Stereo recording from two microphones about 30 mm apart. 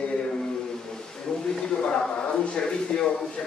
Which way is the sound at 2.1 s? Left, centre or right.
Left.